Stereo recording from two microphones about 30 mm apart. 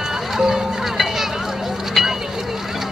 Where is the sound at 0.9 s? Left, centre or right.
Centre.